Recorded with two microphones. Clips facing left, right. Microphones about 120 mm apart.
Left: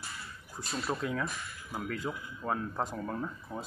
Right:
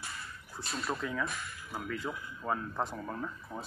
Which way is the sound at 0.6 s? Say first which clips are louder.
Left 2 dB; 5° left (ahead or behind).